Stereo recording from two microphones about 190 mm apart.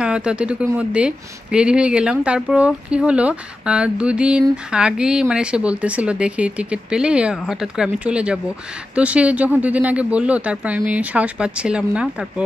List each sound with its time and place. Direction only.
0.0 s a woman's voice: 5° right (ahead or behind)